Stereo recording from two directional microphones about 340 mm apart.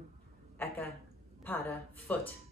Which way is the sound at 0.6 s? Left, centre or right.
Centre.